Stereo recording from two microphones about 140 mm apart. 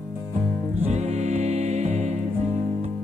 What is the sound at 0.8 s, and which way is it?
Music, 55° right (ahead or behind).